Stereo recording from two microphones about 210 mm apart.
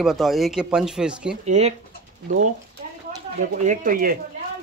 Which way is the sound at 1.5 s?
30° right (ahead or behind).